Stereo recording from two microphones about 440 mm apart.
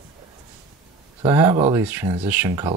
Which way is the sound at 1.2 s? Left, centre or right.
Centre.